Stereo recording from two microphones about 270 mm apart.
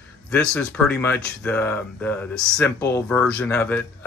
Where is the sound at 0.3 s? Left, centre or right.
Centre.